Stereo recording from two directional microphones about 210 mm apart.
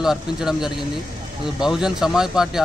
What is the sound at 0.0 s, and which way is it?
Speech, centre (ahead or behind).